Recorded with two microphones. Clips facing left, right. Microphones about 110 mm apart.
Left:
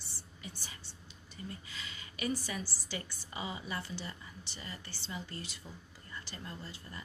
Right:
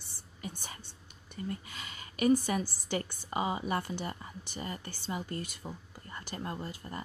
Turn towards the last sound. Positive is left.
turn(degrees=-45)  # may be behind; listen again after turning